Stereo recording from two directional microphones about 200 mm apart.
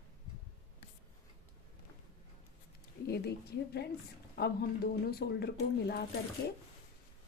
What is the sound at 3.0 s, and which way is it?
Speech, 50° left (ahead or behind).